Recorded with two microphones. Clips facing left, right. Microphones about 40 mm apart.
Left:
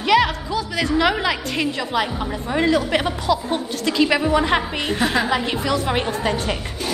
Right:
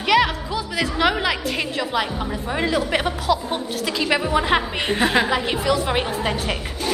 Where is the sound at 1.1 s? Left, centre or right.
Centre.